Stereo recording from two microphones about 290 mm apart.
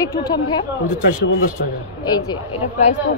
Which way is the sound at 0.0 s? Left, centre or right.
Centre.